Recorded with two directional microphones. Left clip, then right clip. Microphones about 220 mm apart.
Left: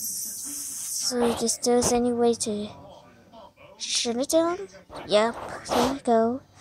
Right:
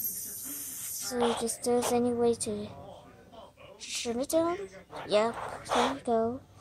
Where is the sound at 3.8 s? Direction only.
20° left (ahead or behind).